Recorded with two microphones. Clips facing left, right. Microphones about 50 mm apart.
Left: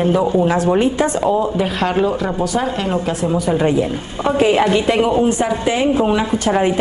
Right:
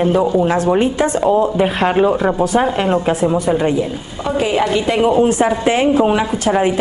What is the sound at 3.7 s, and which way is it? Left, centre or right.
A woman's voice, centre.